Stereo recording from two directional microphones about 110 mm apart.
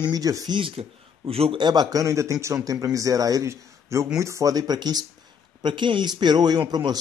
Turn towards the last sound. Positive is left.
turn(degrees=-40)  # may be behind; listen again after turning